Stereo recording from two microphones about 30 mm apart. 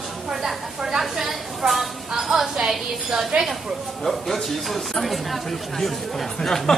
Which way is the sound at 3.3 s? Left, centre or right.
Right.